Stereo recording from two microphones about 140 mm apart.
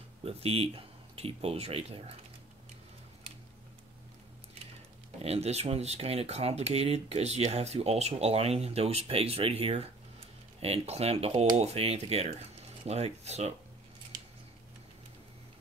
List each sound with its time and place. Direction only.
0.2 s speech: 45° right (ahead or behind)
5.2 s speech: 50° right (ahead or behind)